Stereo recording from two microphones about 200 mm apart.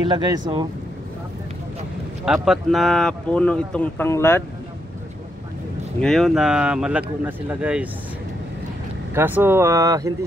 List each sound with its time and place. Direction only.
0.1 s speech: 20° right (ahead or behind)
2.2 s speech: centre (ahead or behind)
5.9 s speech: centre (ahead or behind)
9.1 s speech: 10° right (ahead or behind)